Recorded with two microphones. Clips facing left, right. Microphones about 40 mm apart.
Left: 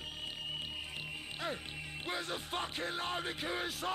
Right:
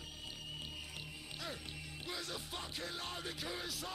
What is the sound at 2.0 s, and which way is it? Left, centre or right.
Music, left.